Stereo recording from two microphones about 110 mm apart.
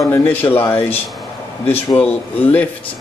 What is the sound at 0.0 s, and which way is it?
Speech, 20° left (ahead or behind).